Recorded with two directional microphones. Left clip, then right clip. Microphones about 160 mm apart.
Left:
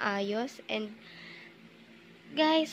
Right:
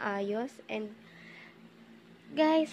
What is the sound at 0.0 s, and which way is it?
Speech, 5° right (ahead or behind).